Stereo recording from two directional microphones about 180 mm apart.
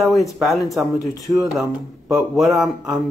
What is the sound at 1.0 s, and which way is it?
Speech, 20° left (ahead or behind).